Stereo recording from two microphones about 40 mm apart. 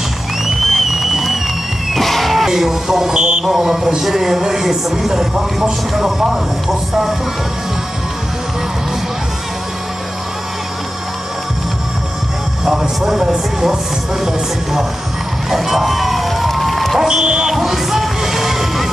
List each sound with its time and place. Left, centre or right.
0.5 s music: centre
2.5 s speech: centre
3.4 s speech: centre
12.6 s speech: centre
15.5 s music: centre
17.0 s speech: centre
17.6 s music: centre